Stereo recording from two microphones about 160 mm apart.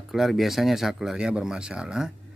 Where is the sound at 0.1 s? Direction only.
Centre (ahead or behind).